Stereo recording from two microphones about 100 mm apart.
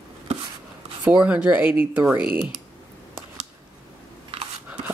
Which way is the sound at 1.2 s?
15° right (ahead or behind).